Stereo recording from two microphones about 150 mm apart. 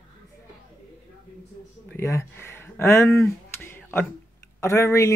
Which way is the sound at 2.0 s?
20° left (ahead or behind).